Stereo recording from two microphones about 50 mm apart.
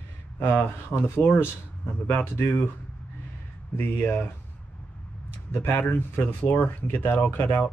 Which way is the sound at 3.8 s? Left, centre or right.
Left.